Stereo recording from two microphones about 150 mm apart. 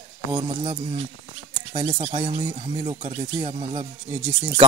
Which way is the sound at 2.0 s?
45° right (ahead or behind).